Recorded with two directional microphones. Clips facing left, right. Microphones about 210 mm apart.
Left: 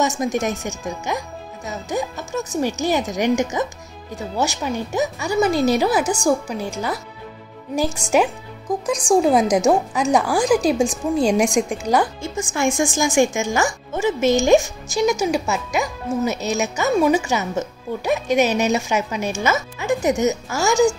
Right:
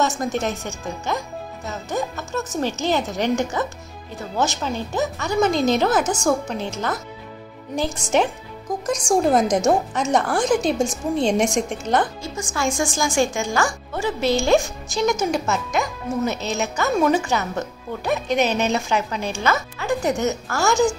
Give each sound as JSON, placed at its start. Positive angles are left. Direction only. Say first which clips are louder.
{"t": 0.2, "sound": "a woman's voice", "louder": "left 2 dB", "side_deg": 15}
{"t": 11.9, "sound": "speech", "louder": "left 1 dB", "side_deg": -25}
{"t": 12.4, "sound": "speech", "louder": "left 3 dB", "side_deg": 25}